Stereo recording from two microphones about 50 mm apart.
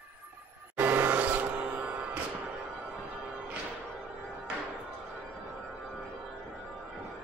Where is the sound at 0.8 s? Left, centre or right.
Right.